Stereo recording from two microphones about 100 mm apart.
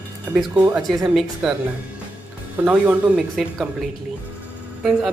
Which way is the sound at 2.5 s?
15° right (ahead or behind).